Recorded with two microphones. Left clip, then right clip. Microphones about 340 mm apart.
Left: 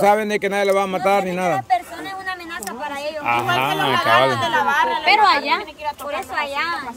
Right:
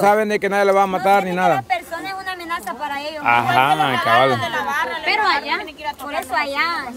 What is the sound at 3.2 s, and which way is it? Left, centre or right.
Speech, centre.